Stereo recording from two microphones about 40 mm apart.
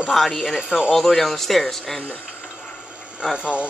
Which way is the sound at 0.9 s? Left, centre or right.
Centre.